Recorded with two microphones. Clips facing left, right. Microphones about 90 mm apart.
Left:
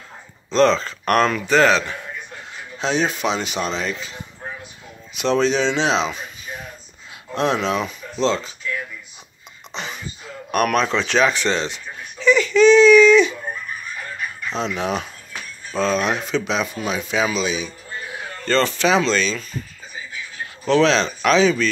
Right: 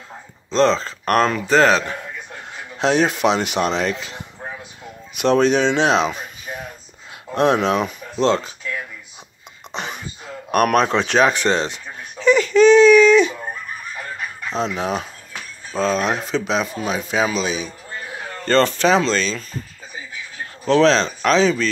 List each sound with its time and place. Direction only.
0.5 s speech: 30° right (ahead or behind)
2.8 s speech: 65° right (ahead or behind)
5.1 s speech: 55° right (ahead or behind)
7.3 s speech: 55° right (ahead or behind)
9.8 s wail: 55° right (ahead or behind)
10.5 s giggle: 50° right (ahead or behind)
14.5 s a man's voice: 35° right (ahead or behind)
20.6 s speech: 35° right (ahead or behind)